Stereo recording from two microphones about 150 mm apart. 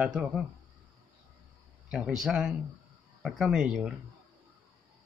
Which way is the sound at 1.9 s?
5° right (ahead or behind).